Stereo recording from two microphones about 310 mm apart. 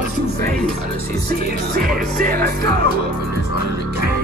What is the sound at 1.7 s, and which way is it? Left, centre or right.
Music, right.